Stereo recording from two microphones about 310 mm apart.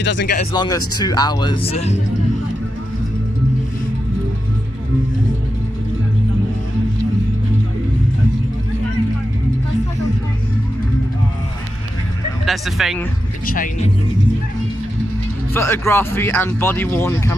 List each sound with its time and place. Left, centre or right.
0.0 s speech: left
0.5 s speech: centre
12.4 s speech: centre
13.5 s speech: left
15.5 s speech: centre